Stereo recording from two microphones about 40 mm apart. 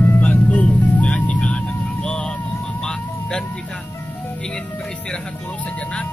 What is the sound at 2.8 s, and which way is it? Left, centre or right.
Vehicle, centre.